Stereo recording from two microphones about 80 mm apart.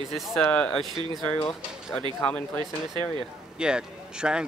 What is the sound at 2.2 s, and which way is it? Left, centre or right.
Speech, centre.